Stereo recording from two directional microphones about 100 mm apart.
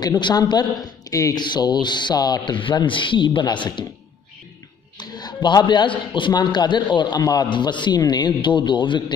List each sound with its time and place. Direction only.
0.0 s speech: 45° left (ahead or behind)
1.4 s speech: 45° left (ahead or behind)
4.9 s a man's voice: 45° left (ahead or behind)